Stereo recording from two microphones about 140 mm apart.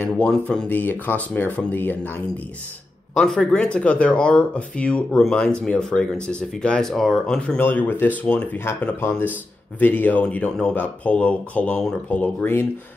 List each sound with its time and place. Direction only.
0.1 s speech: 5° left (ahead or behind)
3.2 s speech: 5° left (ahead or behind)